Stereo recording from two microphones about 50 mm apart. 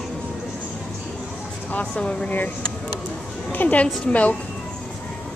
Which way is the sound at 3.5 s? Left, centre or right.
Left.